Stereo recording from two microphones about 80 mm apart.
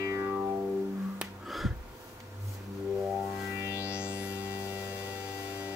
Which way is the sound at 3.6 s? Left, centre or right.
Right.